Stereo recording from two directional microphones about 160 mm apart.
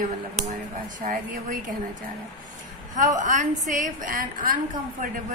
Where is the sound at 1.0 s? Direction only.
55° right (ahead or behind).